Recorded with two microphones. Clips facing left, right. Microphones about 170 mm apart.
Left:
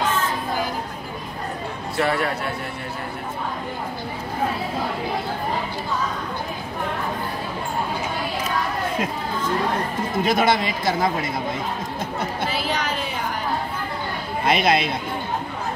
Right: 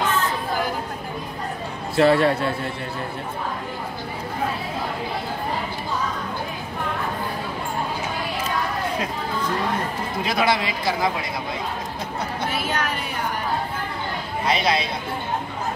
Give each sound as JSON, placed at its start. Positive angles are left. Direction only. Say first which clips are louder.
{"t": 2.0, "sound": "a man's voice", "louder": "right 6 dB", "side_deg": -30}
{"t": 10.2, "sound": "speech", "louder": "left 2 dB", "side_deg": 50}
{"t": 12.5, "sound": "a sound", "louder": "right 1 dB", "side_deg": 0}
{"t": 14.4, "sound": "speech", "louder": "left 3 dB", "side_deg": 55}